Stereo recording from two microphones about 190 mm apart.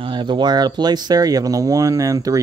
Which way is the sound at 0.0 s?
25° right (ahead or behind).